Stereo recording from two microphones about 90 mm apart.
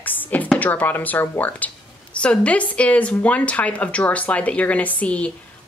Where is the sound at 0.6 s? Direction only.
20° left (ahead or behind).